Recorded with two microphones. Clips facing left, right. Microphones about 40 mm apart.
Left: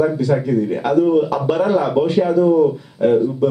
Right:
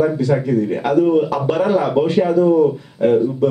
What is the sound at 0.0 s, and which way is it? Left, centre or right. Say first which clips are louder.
Speech: even; centre.